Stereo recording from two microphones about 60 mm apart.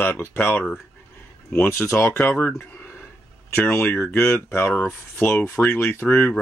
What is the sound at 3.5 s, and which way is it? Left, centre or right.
Speech, left.